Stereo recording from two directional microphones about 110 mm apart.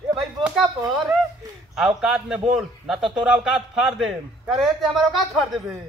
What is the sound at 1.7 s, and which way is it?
Speech, 5° right (ahead or behind).